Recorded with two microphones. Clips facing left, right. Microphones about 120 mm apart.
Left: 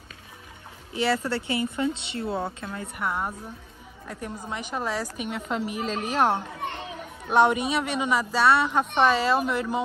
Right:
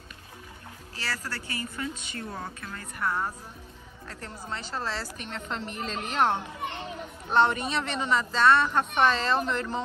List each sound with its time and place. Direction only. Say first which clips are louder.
0.9 s a woman's voice: left 11 dB; 20° left (ahead or behind)